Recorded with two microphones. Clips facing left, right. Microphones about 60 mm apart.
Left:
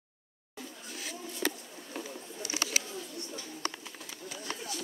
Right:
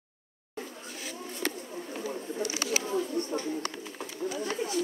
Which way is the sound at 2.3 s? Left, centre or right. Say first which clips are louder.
Right 3 dB; right.